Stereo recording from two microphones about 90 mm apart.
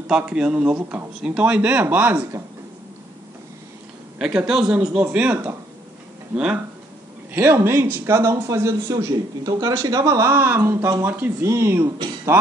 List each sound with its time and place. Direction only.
0.1 s a man's voice: 10° right (ahead or behind)
4.5 s a man's voice: 10° right (ahead or behind)
7.3 s speech: 30° right (ahead or behind)